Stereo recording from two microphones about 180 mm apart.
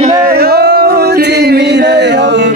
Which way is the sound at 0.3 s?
60° right (ahead or behind).